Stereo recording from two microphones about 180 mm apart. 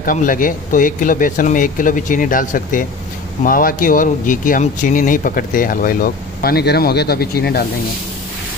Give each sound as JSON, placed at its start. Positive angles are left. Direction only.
{"t": 0.0, "sound": "speech", "side_deg": 50}